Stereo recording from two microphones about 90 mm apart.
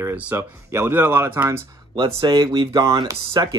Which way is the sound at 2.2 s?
40° right (ahead or behind).